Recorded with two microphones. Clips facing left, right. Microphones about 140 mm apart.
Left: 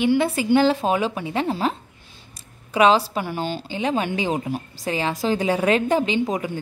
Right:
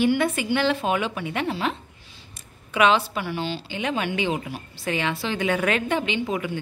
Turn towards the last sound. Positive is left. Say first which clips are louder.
# left 3 dB
turn(degrees=35)  # may be behind; listen again after turning